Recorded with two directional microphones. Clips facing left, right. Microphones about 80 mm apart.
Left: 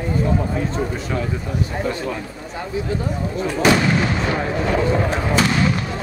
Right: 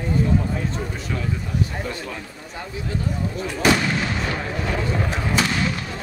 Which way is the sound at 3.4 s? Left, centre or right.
Left.